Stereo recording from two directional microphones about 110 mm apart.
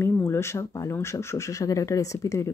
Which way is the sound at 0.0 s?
25° left (ahead or behind).